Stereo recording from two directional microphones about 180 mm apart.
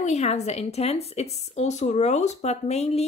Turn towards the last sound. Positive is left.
turn(degrees=35)  # may be behind; listen again after turning